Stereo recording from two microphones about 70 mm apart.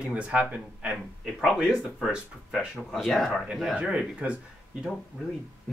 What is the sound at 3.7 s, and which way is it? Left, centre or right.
Speech, centre.